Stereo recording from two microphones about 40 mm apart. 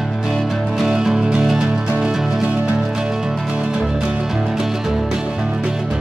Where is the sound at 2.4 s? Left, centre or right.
Right.